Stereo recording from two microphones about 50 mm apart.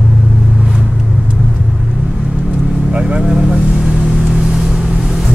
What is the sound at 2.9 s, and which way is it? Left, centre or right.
Vehicle, right.